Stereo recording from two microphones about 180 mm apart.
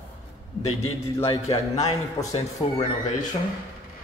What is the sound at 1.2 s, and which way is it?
A man's voice, 15° left (ahead or behind).